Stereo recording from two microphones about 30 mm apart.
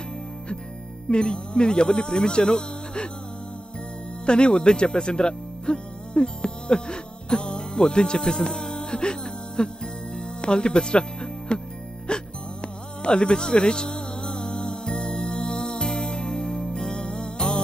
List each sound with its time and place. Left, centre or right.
1.0 s speech: left
4.3 s speech: left
8.2 s music: left
10.4 s speech: left
12.1 s music: left